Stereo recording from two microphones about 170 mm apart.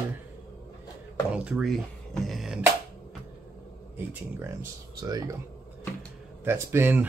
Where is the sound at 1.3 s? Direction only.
5° right (ahead or behind).